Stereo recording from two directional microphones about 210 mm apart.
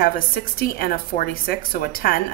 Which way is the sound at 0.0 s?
45° left (ahead or behind).